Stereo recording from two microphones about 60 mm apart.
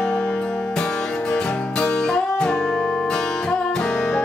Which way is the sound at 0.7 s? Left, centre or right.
Centre.